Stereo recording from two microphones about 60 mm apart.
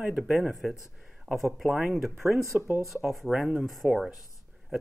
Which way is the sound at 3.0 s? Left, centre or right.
Centre.